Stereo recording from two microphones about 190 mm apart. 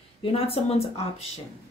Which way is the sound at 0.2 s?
30° left (ahead or behind).